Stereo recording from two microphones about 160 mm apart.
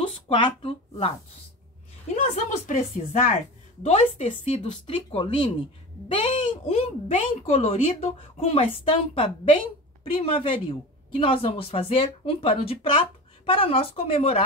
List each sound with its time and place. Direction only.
0.0 s speech: 30° left (ahead or behind)
2.3 s speech: 50° left (ahead or behind)